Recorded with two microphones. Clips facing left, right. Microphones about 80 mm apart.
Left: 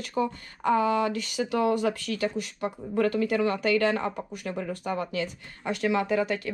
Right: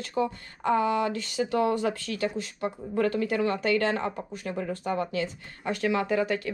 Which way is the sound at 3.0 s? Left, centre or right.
Right.